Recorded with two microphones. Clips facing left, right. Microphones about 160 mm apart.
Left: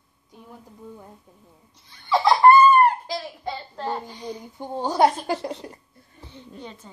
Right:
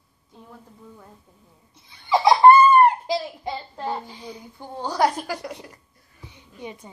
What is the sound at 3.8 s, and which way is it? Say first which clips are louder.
Speech: even; 5° right (ahead or behind).